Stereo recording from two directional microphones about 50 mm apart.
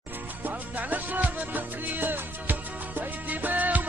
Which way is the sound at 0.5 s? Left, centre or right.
Right.